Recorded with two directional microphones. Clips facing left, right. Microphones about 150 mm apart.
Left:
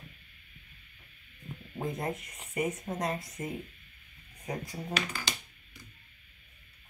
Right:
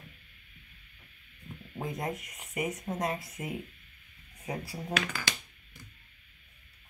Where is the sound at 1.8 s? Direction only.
Centre (ahead or behind).